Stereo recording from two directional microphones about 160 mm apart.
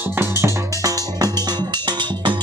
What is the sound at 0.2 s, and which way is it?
Music, 20° right (ahead or behind).